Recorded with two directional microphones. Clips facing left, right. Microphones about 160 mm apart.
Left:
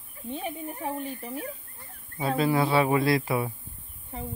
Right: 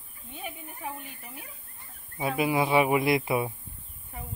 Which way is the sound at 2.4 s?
15° right (ahead or behind).